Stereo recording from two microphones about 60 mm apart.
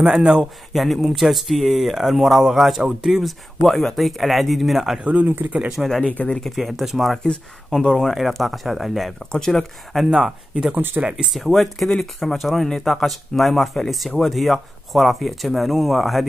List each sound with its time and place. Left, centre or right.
0.2 s speech: centre
0.7 s speech: centre
5.0 s speech: right
6.0 s speech: left
6.4 s speech: centre
10.0 s speech: centre
11.3 s speech: centre